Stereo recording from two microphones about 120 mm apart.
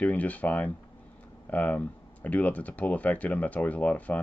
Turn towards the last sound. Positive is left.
turn(degrees=10)  # may be behind; listen again after turning